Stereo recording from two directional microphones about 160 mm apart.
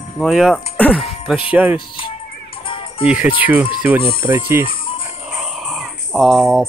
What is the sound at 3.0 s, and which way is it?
Speech, 10° right (ahead or behind).